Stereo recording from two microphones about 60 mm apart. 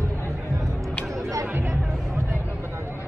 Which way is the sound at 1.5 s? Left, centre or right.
Right.